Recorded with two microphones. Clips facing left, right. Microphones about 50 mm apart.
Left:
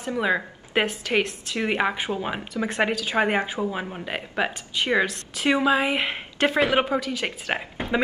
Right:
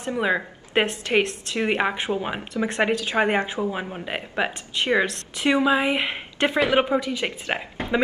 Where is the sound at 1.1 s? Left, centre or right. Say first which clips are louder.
Right 3 dB; right.